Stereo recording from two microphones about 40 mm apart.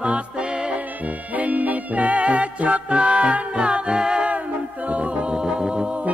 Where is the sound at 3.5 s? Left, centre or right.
Right.